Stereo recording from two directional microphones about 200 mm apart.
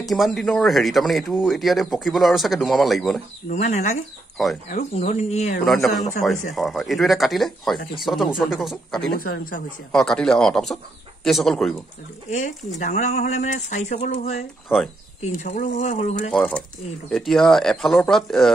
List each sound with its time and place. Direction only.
0.0 s speech: centre (ahead or behind)
3.4 s speech: 35° left (ahead or behind)
4.4 s speech: centre (ahead or behind)
4.9 s speech: 30° left (ahead or behind)
5.7 s speech: centre (ahead or behind)
9.2 s speech: 45° left (ahead or behind)
9.9 s speech: 5° left (ahead or behind)
12.3 s speech: 40° left (ahead or behind)
14.7 s speech: 10° left (ahead or behind)
15.1 s speech: 35° left (ahead or behind)
16.3 s speech: 5° left (ahead or behind)